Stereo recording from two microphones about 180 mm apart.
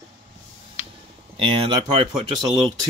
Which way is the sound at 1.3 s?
30° right (ahead or behind).